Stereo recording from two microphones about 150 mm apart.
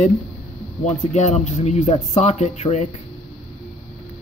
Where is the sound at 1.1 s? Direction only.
50° left (ahead or behind).